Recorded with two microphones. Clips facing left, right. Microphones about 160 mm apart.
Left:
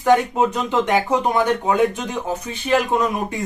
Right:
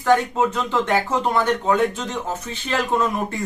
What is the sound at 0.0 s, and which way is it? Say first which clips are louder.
Speech: left 2 dB; 15° left (ahead or behind).